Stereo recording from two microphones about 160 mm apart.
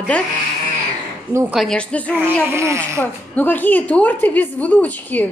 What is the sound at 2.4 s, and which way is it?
Speech, 15° right (ahead or behind).